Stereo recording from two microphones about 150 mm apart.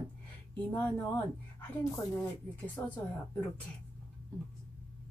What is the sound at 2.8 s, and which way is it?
Speech, 20° left (ahead or behind).